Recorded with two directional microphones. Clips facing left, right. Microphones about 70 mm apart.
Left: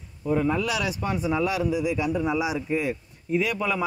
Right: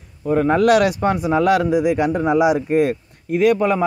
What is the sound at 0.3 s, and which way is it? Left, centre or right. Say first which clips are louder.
Speech: right 10 dB; right.